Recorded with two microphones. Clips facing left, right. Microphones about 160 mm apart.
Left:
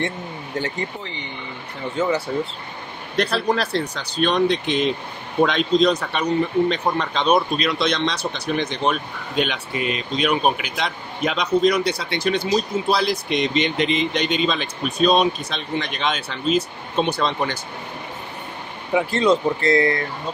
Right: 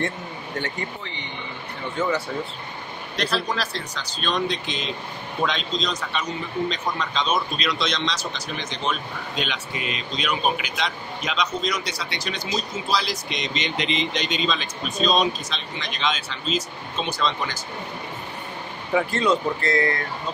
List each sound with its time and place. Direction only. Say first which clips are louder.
2.0 s speech: left 3 dB; 30° left (ahead or behind)
3.2 s a man's voice: left 5 dB; 55° left (ahead or behind)
19.1 s speech: left 4 dB; 30° left (ahead or behind)